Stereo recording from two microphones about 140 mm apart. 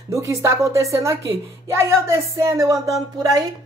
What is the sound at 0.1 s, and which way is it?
Speech, 20° right (ahead or behind).